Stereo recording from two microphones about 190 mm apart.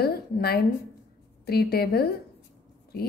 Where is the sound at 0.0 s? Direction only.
55° left (ahead or behind).